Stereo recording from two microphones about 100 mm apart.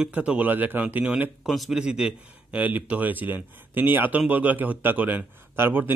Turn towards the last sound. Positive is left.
turn(degrees=-20)  # may be behind; listen again after turning